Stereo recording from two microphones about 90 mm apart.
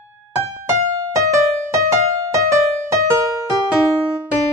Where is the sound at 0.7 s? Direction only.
35° right (ahead or behind).